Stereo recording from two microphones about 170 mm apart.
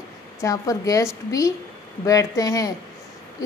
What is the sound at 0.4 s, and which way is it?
A woman's voice, 20° left (ahead or behind).